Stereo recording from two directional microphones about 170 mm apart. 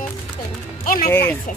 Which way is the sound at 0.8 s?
55° left (ahead or behind).